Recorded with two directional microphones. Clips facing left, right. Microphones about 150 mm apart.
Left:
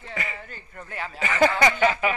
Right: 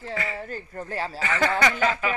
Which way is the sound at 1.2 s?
15° left (ahead or behind).